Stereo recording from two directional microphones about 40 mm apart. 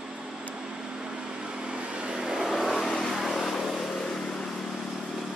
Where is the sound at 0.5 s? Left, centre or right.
Centre.